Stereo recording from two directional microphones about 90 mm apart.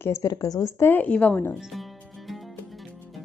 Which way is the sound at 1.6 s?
Centre (ahead or behind).